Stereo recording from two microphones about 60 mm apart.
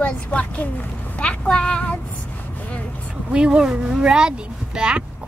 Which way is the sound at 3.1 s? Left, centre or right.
Centre.